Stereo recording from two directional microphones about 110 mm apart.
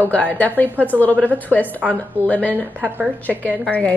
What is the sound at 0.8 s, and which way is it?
Speech, 15° left (ahead or behind).